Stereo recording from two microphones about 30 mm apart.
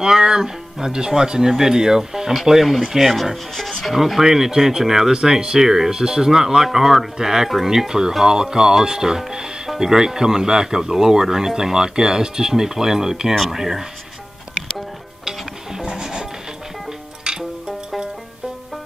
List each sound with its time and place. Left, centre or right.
0.0 s speech: right
2.3 s speech: centre
4.2 s speech: centre
15.8 s music: right